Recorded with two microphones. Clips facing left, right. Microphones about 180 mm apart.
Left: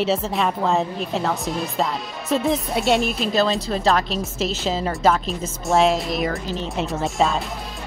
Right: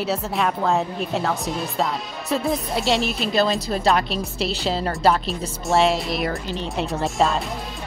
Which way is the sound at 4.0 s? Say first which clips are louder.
Left 1 dB; 40° left (ahead or behind).